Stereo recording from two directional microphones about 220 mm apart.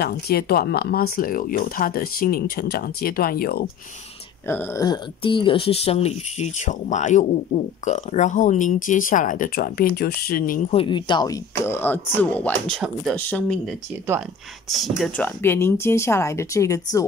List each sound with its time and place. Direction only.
0.0 s speech: 45° left (ahead or behind)
4.5 s speech: 10° left (ahead or behind); by 10.6 s 40° left (ahead or behind)
10.7 s speech: 25° left (ahead or behind)